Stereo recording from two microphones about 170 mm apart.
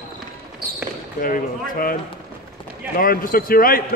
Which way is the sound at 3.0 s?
60° left (ahead or behind).